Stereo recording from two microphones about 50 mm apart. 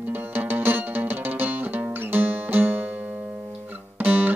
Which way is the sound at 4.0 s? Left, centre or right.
Right.